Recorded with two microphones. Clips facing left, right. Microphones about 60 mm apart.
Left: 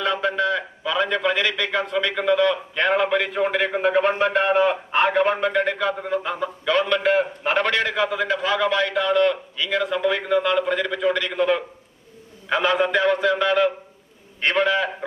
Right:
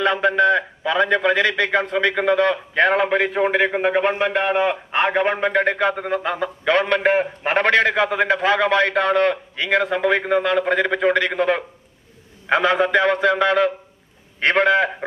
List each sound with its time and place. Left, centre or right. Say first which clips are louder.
0.0 s a man's voice: right 5 dB; right; by 5.5 s centre
5.5 s a man's voice: right 3 dB; right
5.9 s a man's voice: right 2 dB; right